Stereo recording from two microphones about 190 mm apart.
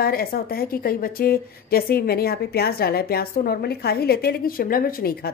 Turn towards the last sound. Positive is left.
turn(degrees=50)  # may be behind; listen again after turning